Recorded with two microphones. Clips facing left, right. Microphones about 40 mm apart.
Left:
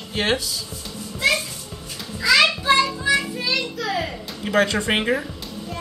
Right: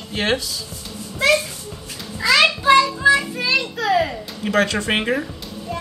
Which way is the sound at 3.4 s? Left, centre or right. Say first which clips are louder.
Right 4 dB; right.